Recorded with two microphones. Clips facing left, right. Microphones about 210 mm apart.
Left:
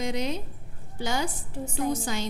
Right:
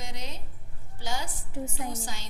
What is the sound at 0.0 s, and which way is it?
A woman's voice, 70° left (ahead or behind).